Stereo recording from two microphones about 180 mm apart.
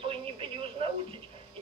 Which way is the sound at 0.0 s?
30° right (ahead or behind).